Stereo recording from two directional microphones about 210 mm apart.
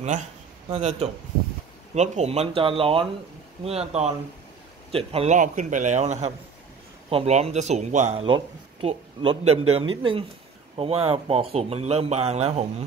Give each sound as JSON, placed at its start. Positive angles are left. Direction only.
{"t": 0.0, "sound": "a man's voice", "side_deg": -35}